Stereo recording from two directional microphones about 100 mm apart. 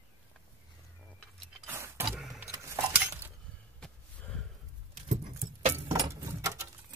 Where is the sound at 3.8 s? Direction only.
10° left (ahead or behind).